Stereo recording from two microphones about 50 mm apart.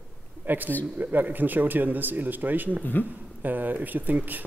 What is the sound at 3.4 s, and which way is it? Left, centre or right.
A man's voice, right.